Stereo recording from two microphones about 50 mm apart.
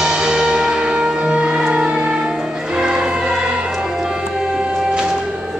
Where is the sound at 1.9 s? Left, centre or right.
Centre.